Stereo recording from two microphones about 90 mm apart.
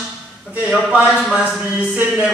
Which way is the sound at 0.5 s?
15° right (ahead or behind).